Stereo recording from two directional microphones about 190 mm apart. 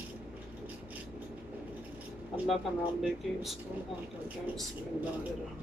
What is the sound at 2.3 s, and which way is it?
Speech, centre (ahead or behind).